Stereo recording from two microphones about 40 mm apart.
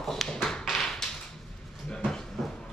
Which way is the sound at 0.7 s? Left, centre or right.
Centre.